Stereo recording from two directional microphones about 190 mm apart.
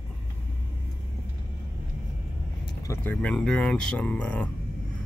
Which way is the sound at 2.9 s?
10° left (ahead or behind).